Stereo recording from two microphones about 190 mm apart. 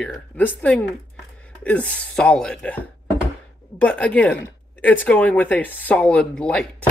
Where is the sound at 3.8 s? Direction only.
5° left (ahead or behind).